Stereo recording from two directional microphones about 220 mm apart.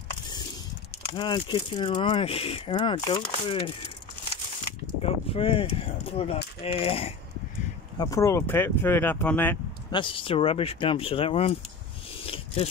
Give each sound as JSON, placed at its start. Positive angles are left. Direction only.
{"t": 1.1, "sound": "speech", "side_deg": 20}
{"t": 5.0, "sound": "speech", "side_deg": 25}
{"t": 8.0, "sound": "speech", "side_deg": 15}
{"t": 9.8, "sound": "speech", "side_deg": 20}
{"t": 12.2, "sound": "a sound", "side_deg": 25}